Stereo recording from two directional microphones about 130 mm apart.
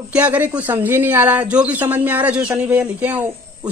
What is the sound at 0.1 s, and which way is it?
Speech, 10° right (ahead or behind).